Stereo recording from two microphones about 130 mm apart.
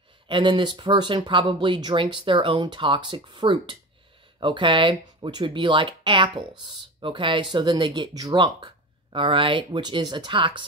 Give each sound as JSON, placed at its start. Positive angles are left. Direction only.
{"t": 0.3, "sound": "speech", "side_deg": -35}